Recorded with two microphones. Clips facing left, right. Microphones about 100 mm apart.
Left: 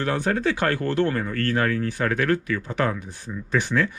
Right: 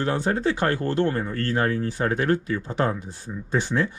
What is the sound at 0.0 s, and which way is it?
Speech, 20° right (ahead or behind).